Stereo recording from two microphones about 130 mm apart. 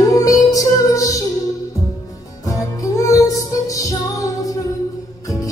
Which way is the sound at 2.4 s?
25° left (ahead or behind).